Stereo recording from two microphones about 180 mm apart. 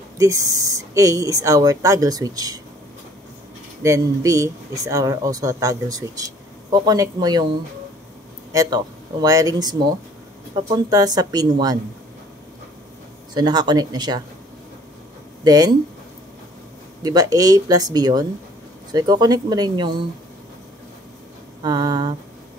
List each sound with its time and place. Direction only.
0.2 s speech: 20° right (ahead or behind)
3.8 s speech: 15° right (ahead or behind)
13.3 s speech: 25° right (ahead or behind)
15.4 s speech: 20° right (ahead or behind)
17.0 s speech: 20° right (ahead or behind)
21.6 s speech: 25° right (ahead or behind)